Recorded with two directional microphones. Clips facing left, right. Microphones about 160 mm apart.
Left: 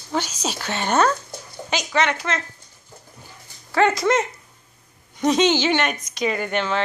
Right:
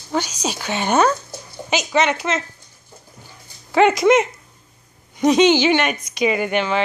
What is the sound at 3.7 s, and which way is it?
Speech, 15° right (ahead or behind).